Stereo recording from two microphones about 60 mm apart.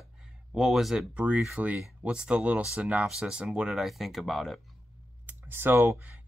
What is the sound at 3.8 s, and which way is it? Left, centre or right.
Speech, centre.